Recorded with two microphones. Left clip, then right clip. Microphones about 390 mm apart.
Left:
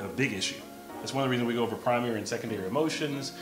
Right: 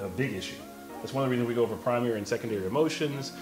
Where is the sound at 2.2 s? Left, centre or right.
Right.